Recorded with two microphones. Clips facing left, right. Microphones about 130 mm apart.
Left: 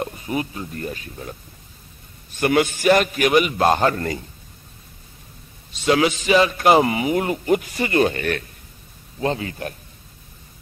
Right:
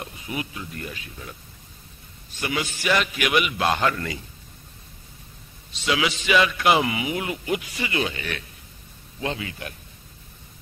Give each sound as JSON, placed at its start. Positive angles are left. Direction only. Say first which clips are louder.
{"t": 0.0, "sound": "speech", "louder": "left 7 dB", "side_deg": 45}
{"t": 2.3, "sound": "a man's voice", "louder": "left 10 dB", "side_deg": 55}
{"t": 5.7, "sound": "a man's voice", "louder": "left 7 dB", "side_deg": 45}
{"t": 9.2, "sound": "a man's voice", "louder": "left 6 dB", "side_deg": 40}